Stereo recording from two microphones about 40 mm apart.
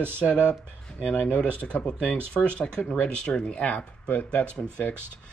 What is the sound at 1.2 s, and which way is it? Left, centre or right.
Speech, left.